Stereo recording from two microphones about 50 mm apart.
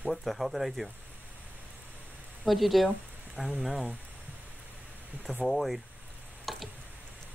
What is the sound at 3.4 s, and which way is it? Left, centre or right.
Speech, right.